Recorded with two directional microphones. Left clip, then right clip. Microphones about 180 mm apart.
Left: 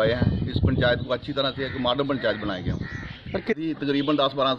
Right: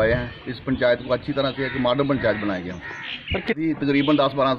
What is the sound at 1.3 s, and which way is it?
Speech, 25° left (ahead or behind).